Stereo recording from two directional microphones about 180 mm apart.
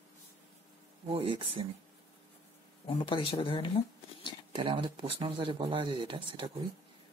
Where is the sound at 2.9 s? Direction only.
30° left (ahead or behind).